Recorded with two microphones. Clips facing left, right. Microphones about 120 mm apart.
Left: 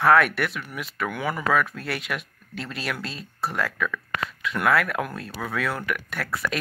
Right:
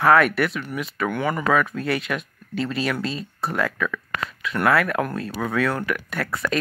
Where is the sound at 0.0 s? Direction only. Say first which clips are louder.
Right 2 dB; centre (ahead or behind).